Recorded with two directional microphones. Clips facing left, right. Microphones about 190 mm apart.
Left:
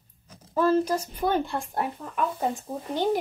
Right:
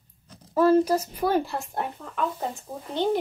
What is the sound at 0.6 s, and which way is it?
A woman's voice, 10° right (ahead or behind).